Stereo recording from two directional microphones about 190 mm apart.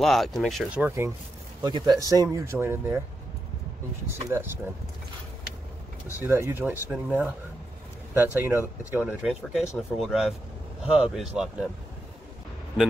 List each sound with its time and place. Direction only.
0.0 s speech: centre (ahead or behind)
4.3 s speech: 10° right (ahead or behind)
6.1 s speech: 10° right (ahead or behind)